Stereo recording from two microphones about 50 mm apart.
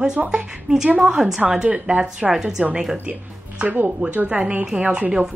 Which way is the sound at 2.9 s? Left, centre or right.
Right.